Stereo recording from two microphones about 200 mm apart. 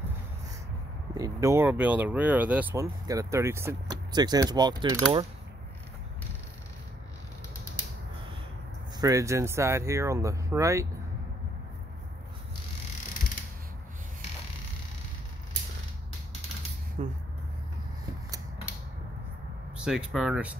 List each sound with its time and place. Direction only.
1.1 s speech: 15° right (ahead or behind)
9.0 s speech: 15° right (ahead or behind)
17.0 s a sound: 30° right (ahead or behind)
19.8 s speech: 5° right (ahead or behind)